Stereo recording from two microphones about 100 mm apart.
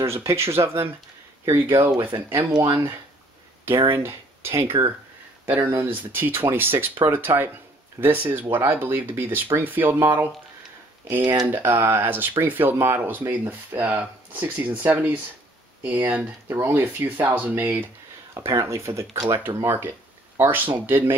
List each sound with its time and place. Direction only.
0.0 s speech: 30° right (ahead or behind)
2.5 s speech: 40° right (ahead or behind)
3.6 s speech: 25° right (ahead or behind)
11.4 s speech: 20° right (ahead or behind)
16.4 s speech: 25° right (ahead or behind)
18.3 s speech: 30° right (ahead or behind)